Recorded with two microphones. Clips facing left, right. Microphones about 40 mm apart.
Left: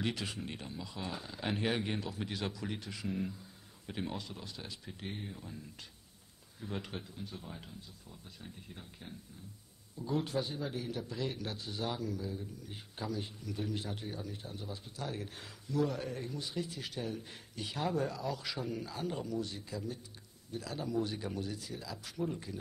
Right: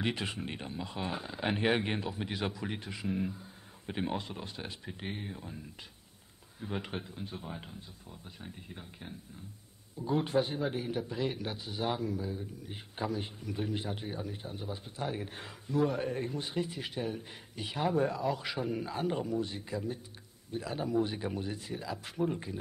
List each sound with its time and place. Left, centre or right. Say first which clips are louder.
0.0 s a man's voice: right 3 dB; right
6.6 s a man's voice: right 4 dB; right